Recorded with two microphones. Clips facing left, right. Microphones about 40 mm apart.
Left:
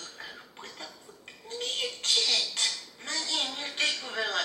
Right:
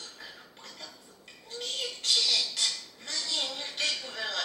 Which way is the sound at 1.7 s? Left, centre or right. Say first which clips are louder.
Even; left.